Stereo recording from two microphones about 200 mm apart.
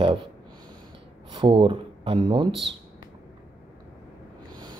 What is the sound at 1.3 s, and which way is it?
Speech, 25° right (ahead or behind).